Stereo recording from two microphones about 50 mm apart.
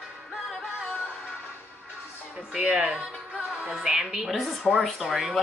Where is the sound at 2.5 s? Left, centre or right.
Centre.